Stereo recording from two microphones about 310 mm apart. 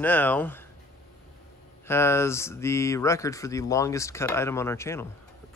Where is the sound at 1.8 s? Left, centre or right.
Centre.